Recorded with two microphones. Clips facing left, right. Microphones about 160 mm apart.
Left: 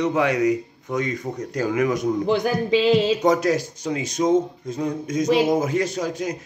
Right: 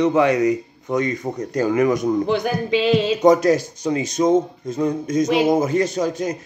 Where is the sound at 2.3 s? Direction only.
35° left (ahead or behind).